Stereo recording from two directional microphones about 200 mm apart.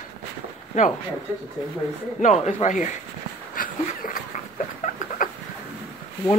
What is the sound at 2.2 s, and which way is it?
Speech, 35° left (ahead or behind).